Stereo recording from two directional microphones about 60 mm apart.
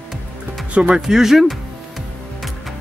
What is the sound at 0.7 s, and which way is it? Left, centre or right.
Speech, centre.